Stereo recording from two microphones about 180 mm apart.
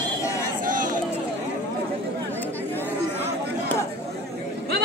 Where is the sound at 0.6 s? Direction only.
50° right (ahead or behind).